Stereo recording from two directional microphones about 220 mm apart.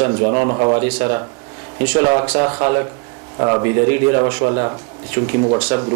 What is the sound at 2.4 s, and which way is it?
Speech, 25° right (ahead or behind).